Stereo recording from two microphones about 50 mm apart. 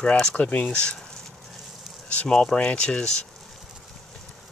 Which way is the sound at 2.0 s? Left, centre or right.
Left.